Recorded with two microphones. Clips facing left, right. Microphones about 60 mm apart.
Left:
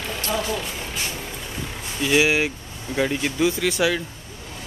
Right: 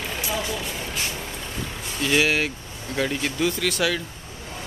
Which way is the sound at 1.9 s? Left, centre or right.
Centre.